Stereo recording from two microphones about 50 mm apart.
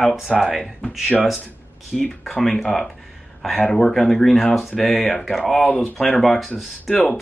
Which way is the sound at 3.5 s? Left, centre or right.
Left.